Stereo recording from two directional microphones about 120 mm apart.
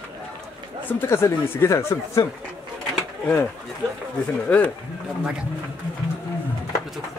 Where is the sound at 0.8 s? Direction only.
20° left (ahead or behind).